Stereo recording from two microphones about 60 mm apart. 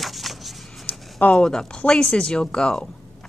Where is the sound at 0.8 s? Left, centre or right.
Left.